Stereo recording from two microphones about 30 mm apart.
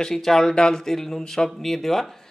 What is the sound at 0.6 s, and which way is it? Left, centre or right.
Speech, left.